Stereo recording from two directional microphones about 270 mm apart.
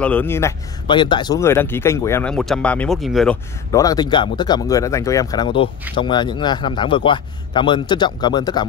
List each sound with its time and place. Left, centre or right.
0.0 s speech: centre
3.7 s speech: centre